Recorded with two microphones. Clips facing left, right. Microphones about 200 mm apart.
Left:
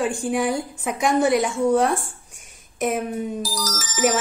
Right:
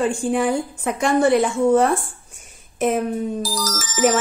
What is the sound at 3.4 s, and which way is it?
Music, 55° right (ahead or behind).